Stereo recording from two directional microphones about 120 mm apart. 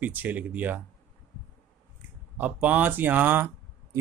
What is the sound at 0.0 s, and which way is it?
Speech, 15° right (ahead or behind).